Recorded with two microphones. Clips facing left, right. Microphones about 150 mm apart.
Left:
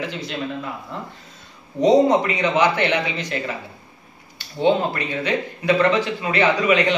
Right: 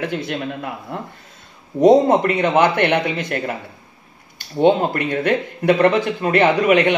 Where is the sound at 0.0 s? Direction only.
55° right (ahead or behind).